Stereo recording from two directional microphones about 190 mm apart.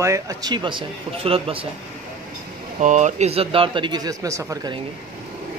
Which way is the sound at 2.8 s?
40° right (ahead or behind).